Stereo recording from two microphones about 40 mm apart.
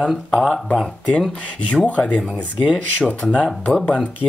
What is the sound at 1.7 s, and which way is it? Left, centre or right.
Speech, left.